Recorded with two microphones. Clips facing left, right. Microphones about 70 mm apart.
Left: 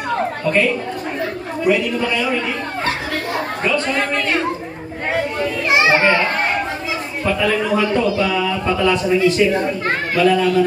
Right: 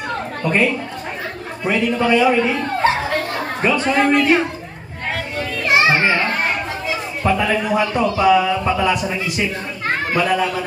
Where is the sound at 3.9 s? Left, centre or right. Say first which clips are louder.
Right 5 dB; centre.